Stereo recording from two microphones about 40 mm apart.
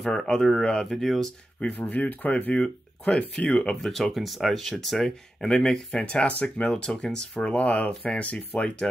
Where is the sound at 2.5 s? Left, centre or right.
Centre.